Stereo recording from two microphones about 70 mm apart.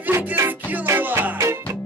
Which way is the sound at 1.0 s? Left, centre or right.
Right.